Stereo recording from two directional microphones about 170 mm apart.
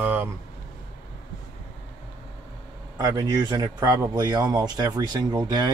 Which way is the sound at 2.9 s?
20° right (ahead or behind).